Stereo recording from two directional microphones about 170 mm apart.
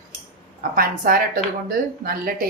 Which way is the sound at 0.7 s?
55° right (ahead or behind).